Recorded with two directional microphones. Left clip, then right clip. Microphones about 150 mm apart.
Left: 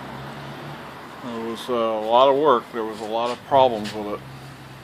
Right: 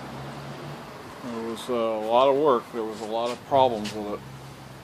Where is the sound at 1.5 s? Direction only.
5° left (ahead or behind).